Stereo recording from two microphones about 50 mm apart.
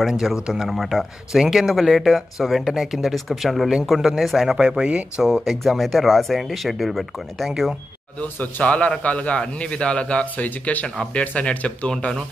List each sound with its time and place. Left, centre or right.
0.1 s speech: centre
5.2 s speech: centre
5.6 s speech: centre
8.2 s a man's voice: left